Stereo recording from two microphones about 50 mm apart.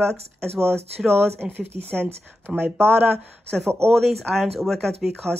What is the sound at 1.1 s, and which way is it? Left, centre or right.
Speech, right.